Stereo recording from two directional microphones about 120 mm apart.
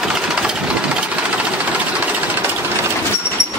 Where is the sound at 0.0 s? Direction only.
5° right (ahead or behind).